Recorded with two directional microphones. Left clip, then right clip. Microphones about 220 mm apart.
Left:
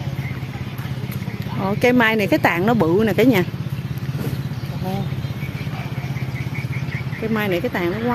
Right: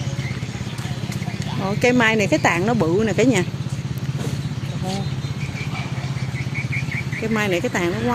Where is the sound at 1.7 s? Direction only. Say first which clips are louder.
Left 1 dB; 15° left (ahead or behind).